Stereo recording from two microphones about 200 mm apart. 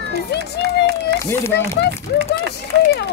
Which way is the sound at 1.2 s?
15° left (ahead or behind).